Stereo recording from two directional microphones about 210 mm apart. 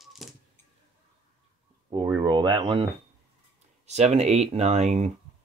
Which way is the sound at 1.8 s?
15° right (ahead or behind).